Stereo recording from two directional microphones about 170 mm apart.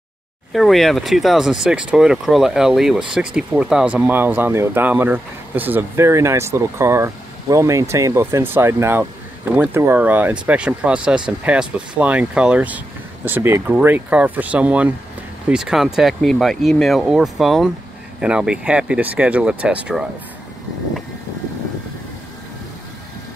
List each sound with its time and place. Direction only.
0.5 s speech: centre (ahead or behind)